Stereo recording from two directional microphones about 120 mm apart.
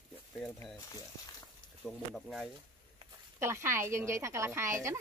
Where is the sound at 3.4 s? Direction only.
20° right (ahead or behind).